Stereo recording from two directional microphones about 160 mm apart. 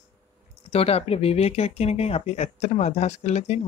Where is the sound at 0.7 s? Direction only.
40° left (ahead or behind).